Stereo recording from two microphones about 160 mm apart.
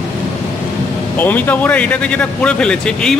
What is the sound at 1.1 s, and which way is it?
A man's voice, 10° left (ahead or behind).